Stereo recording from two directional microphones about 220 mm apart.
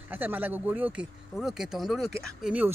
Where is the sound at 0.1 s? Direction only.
10° right (ahead or behind).